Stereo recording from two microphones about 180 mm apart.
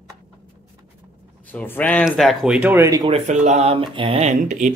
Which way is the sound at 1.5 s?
10° left (ahead or behind).